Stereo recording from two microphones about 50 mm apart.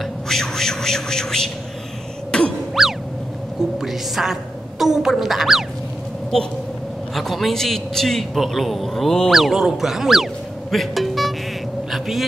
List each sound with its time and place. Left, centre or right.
0.0 s a sound: centre
2.3 s music: centre
2.8 s boing: centre
3.7 s a woman's voice: centre
7.2 s a man's voice: centre
9.3 s speech: centre
11.9 s vehicle: centre